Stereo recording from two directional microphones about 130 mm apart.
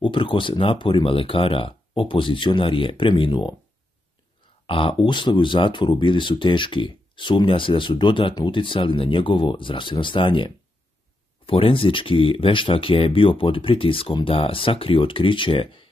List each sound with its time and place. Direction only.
0.0 s speech: 40° left (ahead or behind)
4.6 s speech: 40° left (ahead or behind)